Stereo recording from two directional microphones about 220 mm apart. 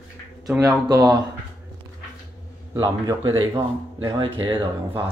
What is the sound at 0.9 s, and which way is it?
Speech, 15° right (ahead or behind).